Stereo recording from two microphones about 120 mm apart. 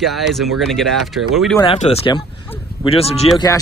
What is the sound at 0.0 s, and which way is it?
Speech, centre (ahead or behind).